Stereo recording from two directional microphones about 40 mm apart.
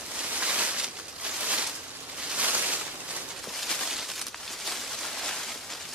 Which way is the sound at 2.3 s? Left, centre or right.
Right.